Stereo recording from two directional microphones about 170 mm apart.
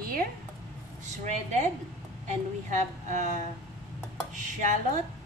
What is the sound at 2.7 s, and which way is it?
Speech, 45° right (ahead or behind).